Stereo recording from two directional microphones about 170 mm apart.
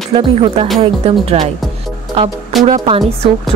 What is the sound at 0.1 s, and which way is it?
Speech, 35° right (ahead or behind).